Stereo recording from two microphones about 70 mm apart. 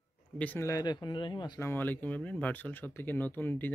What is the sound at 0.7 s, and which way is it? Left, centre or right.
Speech, left.